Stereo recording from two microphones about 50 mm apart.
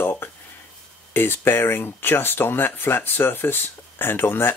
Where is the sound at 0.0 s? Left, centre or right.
Left.